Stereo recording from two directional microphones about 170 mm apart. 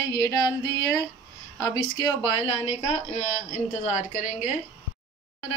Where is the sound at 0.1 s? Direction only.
20° left (ahead or behind).